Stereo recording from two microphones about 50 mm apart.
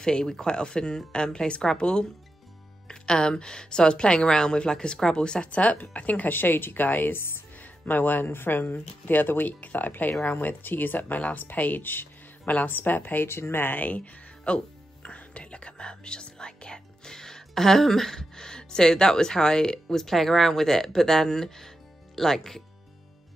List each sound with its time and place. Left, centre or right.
0.0 s a woman's voice: centre; by 7.4 s left
7.5 s speech: left
13.3 s speech: left
13.7 s speech: left; by 22.6 s centre